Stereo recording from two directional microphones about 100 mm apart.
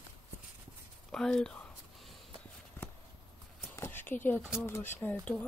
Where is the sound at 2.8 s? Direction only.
25° left (ahead or behind).